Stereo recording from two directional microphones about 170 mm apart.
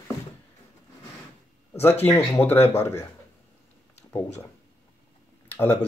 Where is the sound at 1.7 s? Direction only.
15° left (ahead or behind).